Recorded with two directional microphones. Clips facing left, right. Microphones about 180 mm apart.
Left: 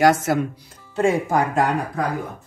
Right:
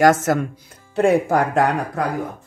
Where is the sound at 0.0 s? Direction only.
45° right (ahead or behind).